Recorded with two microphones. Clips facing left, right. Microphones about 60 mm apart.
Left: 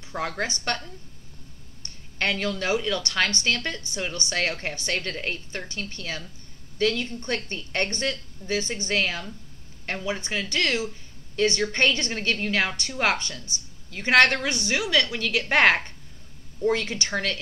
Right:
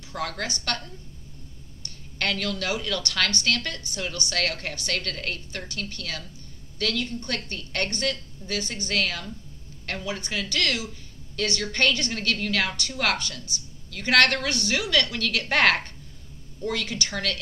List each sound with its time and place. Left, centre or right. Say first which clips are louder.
0.1 s a woman's voice: left 2 dB; left